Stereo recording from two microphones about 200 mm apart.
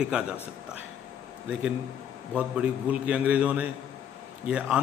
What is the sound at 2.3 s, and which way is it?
A man's voice, 5° right (ahead or behind).